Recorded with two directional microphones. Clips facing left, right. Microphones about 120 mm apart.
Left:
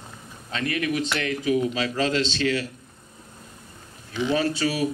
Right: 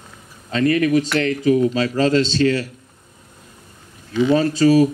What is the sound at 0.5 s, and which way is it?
Speech, 40° right (ahead or behind).